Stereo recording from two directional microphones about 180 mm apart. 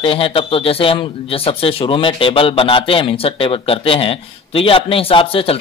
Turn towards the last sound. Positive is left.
turn(degrees=30)  # may be behind; listen again after turning